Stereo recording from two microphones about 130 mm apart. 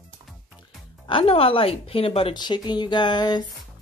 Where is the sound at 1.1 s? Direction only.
45° left (ahead or behind).